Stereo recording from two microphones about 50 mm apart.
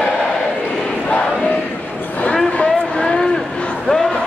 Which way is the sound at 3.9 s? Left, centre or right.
Centre.